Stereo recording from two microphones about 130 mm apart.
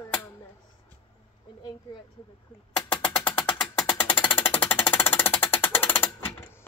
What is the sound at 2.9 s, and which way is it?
Music, 40° left (ahead or behind).